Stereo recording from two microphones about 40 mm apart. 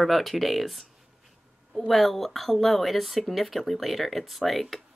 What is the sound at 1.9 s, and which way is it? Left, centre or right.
Speech, centre.